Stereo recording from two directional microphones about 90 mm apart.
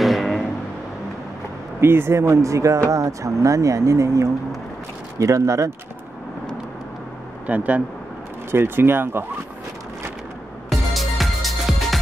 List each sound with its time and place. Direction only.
0.0 s vehicle: centre (ahead or behind)
1.8 s speech: 25° right (ahead or behind)
7.4 s speech: 15° right (ahead or behind)
10.7 s music: centre (ahead or behind)